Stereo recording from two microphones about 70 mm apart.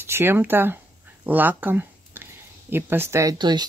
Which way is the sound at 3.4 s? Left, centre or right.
Right.